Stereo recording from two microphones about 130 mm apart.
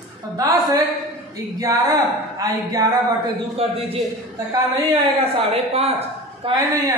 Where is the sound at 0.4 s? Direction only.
25° right (ahead or behind).